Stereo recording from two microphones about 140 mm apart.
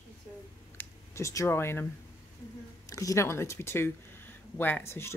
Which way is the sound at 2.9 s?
25° left (ahead or behind).